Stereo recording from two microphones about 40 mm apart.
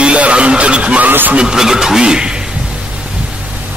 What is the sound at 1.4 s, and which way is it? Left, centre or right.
Speech, centre.